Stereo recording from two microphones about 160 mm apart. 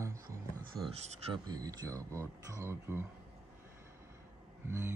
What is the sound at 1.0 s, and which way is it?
Speech, 40° right (ahead or behind).